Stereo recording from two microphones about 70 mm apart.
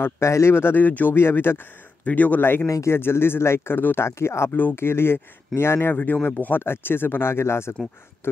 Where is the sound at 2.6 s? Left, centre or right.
Left.